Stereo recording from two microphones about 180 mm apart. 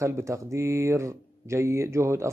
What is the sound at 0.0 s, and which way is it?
Speech, 15° right (ahead or behind).